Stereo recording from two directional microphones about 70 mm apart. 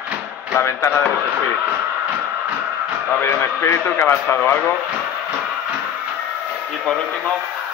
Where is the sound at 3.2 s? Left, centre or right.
Left.